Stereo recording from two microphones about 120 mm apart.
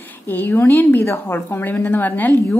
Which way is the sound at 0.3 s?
15° left (ahead or behind).